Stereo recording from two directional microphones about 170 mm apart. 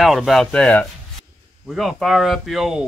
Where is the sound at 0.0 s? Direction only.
Centre (ahead or behind).